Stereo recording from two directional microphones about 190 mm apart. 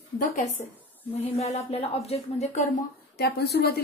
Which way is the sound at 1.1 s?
35° left (ahead or behind).